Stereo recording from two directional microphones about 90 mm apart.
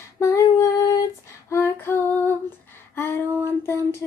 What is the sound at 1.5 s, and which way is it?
Female singing, 25° left (ahead or behind).